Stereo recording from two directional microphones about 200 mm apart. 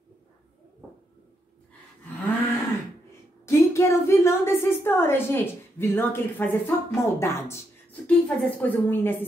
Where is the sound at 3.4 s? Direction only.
15° left (ahead or behind).